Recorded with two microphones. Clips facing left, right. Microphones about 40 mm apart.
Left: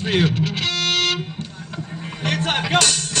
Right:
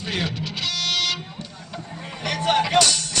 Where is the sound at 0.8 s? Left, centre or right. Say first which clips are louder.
Left 4 dB; left.